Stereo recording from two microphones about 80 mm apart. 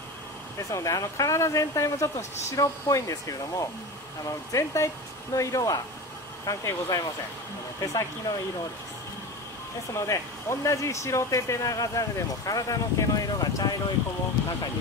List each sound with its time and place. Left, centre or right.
0.7 s speech: left
9.9 s speech: left